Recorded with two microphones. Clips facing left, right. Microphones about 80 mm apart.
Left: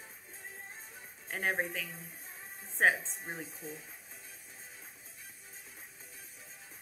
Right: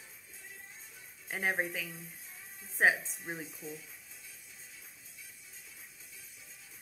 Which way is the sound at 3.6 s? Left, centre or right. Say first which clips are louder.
Even; left.